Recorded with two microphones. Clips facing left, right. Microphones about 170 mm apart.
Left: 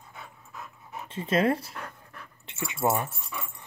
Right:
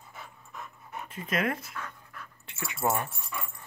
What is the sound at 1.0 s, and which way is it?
Pant, 30° left (ahead or behind).